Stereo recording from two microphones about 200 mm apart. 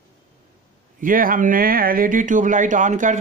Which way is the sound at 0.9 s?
45° right (ahead or behind).